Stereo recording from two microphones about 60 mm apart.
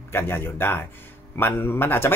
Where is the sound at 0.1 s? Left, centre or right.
Left.